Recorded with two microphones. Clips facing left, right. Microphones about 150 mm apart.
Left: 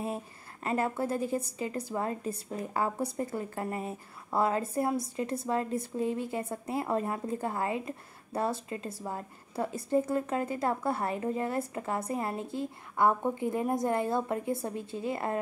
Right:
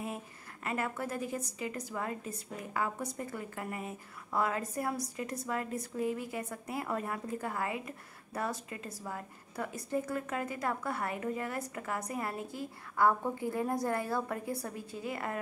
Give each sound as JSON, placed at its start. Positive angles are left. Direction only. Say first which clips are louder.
{"t": 0.7, "sound": "a woman's voice", "louder": "left 6 dB", "side_deg": 30}